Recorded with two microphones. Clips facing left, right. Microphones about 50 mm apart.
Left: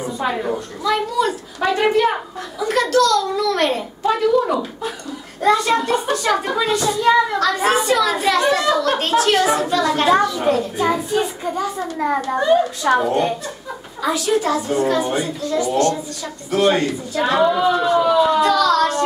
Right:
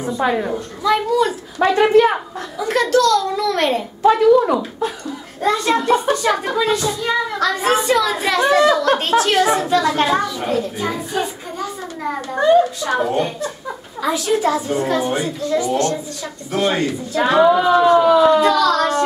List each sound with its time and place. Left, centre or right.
0.8 s a child's voice: centre
1.6 s a woman's voice: right
2.6 s a child's voice: centre